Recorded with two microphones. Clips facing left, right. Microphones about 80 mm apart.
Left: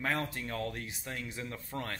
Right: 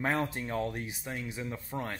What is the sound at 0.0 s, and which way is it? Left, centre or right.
Speech, right.